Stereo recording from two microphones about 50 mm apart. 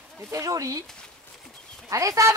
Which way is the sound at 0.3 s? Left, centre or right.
Right.